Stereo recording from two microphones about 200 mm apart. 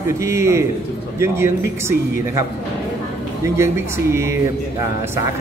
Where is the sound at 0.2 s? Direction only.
15° right (ahead or behind).